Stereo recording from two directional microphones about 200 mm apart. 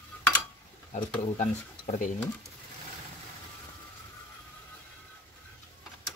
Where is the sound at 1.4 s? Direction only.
30° left (ahead or behind).